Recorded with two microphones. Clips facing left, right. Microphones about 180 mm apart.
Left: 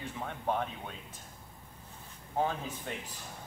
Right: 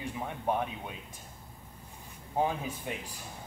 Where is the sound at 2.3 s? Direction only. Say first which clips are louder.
Right 2 dB; 10° right (ahead or behind).